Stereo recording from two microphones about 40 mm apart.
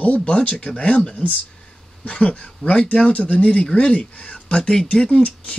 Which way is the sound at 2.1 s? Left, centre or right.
Left.